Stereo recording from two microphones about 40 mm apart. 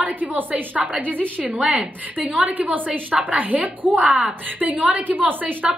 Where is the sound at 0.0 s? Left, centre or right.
Right.